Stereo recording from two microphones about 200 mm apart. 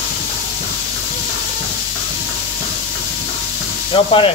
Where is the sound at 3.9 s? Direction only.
25° left (ahead or behind).